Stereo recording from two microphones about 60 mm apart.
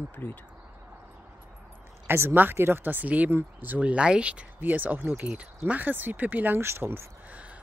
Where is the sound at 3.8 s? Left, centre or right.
Centre; by 7.0 s right.